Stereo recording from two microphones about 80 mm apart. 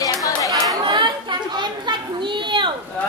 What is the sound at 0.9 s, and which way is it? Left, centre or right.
Chatter, right.